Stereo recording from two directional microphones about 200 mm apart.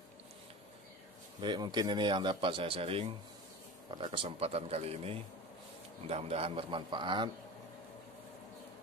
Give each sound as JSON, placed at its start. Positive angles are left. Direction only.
{"t": 1.4, "sound": "a man's voice", "side_deg": -20}